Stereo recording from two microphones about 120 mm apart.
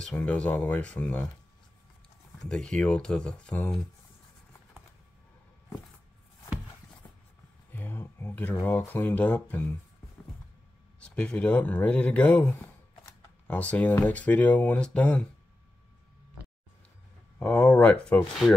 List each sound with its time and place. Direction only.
0.0 s speech: 10° left (ahead or behind)
2.4 s speech: 5° left (ahead or behind)
7.7 s speech: 20° left (ahead or behind)
11.1 s speech: 10° left (ahead or behind)
17.4 s speech: 10° left (ahead or behind)